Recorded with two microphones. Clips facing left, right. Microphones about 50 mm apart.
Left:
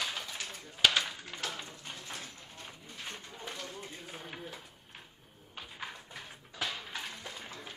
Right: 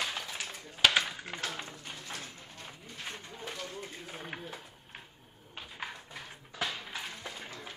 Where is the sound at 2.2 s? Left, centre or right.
Centre.